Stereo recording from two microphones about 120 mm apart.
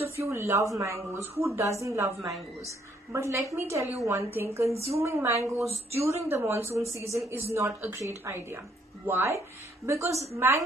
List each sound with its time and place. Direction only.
0.1 s a woman's voice: 20° right (ahead or behind)
4.6 s a woman's voice: 60° right (ahead or behind)
5.0 s a woman's voice: 25° right (ahead or behind)